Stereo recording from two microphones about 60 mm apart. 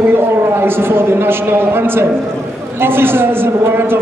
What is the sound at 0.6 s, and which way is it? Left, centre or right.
A man's voice, right.